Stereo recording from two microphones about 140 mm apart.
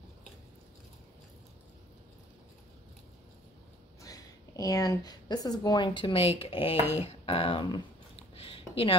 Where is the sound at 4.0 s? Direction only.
25° left (ahead or behind).